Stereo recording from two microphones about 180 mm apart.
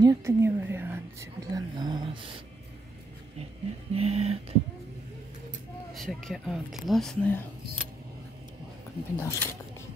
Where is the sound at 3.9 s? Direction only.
35° right (ahead or behind).